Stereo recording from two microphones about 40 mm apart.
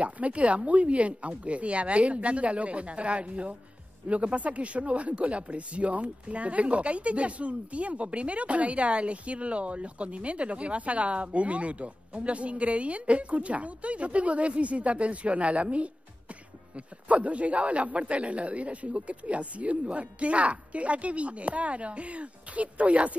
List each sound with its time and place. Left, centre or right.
0.0 s speech: right